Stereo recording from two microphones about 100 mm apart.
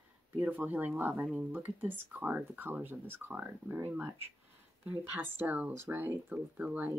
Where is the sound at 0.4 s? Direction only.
15° right (ahead or behind).